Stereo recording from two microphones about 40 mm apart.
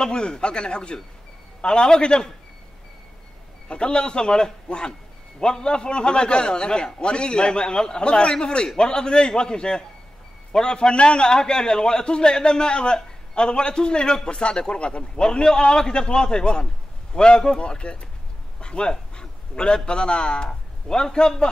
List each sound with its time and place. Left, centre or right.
0.0 s a man's voice: centre
3.6 s a man's voice: left